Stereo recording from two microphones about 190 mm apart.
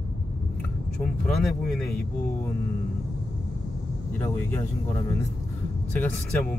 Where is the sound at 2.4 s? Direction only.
15° left (ahead or behind).